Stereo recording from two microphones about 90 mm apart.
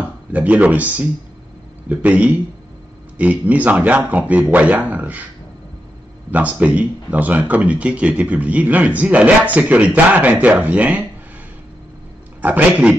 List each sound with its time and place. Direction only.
0.3 s speech: 15° right (ahead or behind)
6.3 s speech: 15° right (ahead or behind)
12.4 s speech: 15° right (ahead or behind)